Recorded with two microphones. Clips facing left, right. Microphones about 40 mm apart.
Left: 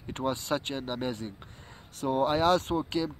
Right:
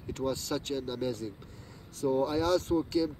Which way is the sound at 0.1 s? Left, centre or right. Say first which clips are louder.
Left 2 dB; left.